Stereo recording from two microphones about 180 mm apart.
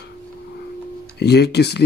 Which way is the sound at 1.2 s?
65° left (ahead or behind).